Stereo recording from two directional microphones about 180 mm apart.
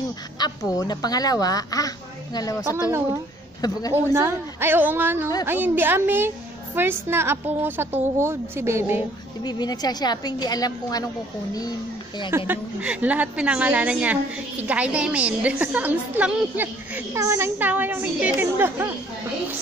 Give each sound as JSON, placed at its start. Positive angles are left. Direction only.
{"t": 0.4, "sound": "a woman's voice", "side_deg": 20}
{"t": 3.9, "sound": "a woman's voice", "side_deg": -15}
{"t": 9.4, "sound": "a woman's voice", "side_deg": 25}
{"t": 12.3, "sound": "a woman's voice", "side_deg": -15}